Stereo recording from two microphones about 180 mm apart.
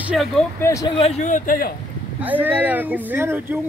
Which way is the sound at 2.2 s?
10° right (ahead or behind).